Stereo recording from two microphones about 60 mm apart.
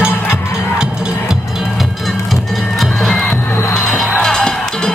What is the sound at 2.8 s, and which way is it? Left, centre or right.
Music, centre.